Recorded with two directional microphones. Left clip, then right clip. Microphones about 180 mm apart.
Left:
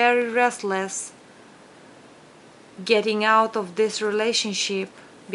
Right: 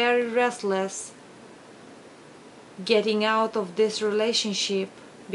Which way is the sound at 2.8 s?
15° left (ahead or behind).